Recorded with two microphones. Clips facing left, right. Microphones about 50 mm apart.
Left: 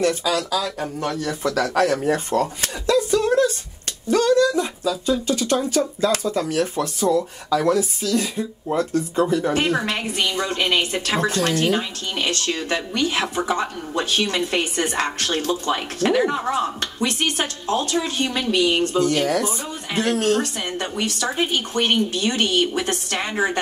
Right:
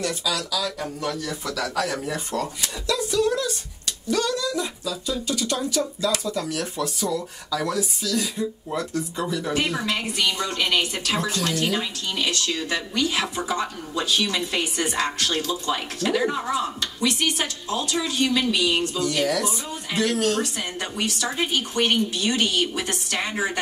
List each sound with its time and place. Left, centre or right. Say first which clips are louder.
0.0 s speech: left 6 dB; left